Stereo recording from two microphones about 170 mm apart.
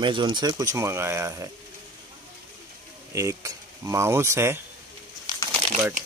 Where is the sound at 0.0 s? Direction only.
25° right (ahead or behind).